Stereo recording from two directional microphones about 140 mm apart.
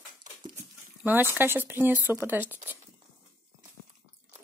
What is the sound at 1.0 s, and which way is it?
Speech, 15° right (ahead or behind).